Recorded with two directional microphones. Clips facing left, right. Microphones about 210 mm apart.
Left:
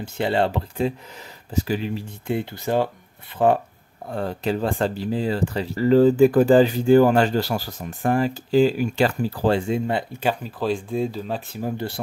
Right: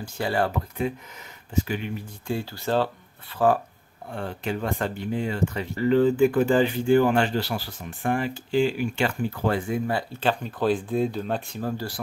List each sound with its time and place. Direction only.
0.0 s speech: 25° left (ahead or behind)
2.2 s speech: 20° left (ahead or behind)
4.1 s speech: 40° left (ahead or behind)
10.2 s speech: centre (ahead or behind)
11.6 s speech: 20° left (ahead or behind)